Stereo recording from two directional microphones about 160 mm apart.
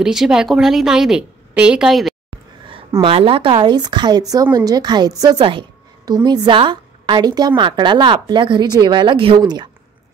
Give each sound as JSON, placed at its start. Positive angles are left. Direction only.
{"t": 0.0, "sound": "a woman's voice", "side_deg": -5}
{"t": 3.0, "sound": "speech", "side_deg": -35}